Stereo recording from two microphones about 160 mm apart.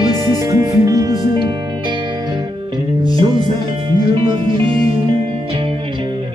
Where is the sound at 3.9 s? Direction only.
30° right (ahead or behind).